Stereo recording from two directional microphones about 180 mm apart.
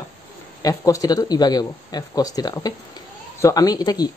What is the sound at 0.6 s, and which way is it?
Speech, 20° left (ahead or behind).